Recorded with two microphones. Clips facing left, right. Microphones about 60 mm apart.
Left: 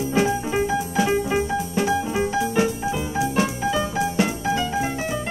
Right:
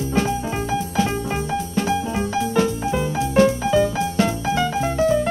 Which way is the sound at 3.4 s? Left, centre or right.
Left.